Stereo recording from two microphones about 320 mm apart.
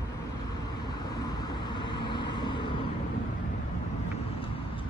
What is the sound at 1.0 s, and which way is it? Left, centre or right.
Vehicle, centre.